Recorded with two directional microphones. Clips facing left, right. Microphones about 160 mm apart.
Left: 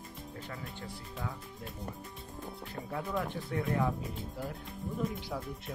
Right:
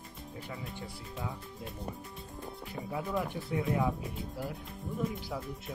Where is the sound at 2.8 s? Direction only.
Centre (ahead or behind).